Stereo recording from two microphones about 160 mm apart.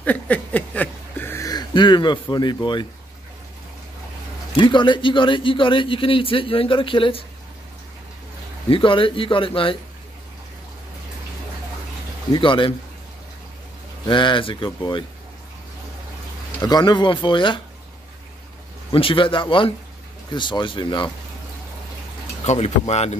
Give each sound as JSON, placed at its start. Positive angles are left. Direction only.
{"t": 0.0, "sound": "a sound", "side_deg": 10}
{"t": 4.6, "sound": "a man's voice", "side_deg": 30}
{"t": 8.6, "sound": "a man's voice", "side_deg": 35}
{"t": 12.3, "sound": "a man's voice", "side_deg": 30}
{"t": 14.0, "sound": "a man's voice", "side_deg": 30}
{"t": 16.6, "sound": "speech", "side_deg": 25}
{"t": 18.9, "sound": "a man's voice", "side_deg": 35}
{"t": 22.4, "sound": "speech", "side_deg": 45}